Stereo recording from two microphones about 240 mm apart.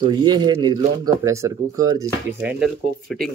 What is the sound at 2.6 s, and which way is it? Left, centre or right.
Speech, centre.